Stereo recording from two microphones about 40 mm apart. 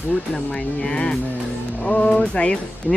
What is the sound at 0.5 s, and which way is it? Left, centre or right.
Speech, left.